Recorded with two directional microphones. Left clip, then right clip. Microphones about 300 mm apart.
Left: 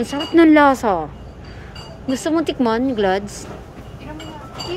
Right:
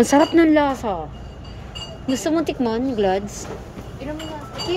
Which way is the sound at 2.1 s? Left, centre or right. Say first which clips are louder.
Left 2 dB; centre.